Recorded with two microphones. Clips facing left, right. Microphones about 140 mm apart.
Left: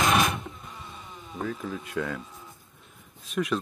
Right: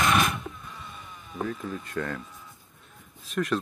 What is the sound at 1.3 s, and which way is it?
Speech, centre (ahead or behind).